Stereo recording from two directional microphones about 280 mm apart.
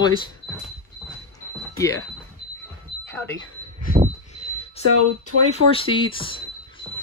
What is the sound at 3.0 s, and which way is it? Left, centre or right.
Smoke detector, centre.